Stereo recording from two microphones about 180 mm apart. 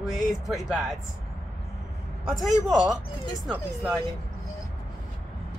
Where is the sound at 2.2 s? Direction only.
Centre (ahead or behind).